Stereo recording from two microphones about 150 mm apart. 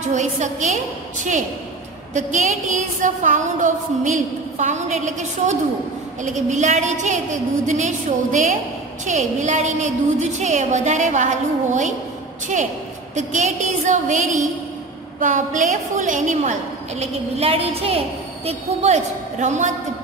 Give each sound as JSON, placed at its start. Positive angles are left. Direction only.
{"t": 0.1, "sound": "a woman's voice", "side_deg": -50}
{"t": 2.1, "sound": "a woman's voice", "side_deg": -50}
{"t": 13.1, "sound": "a woman's voice", "side_deg": -50}
{"t": 17.0, "sound": "a woman's voice", "side_deg": -40}